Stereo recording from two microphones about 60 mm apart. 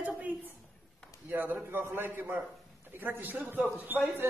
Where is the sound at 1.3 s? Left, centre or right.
Right.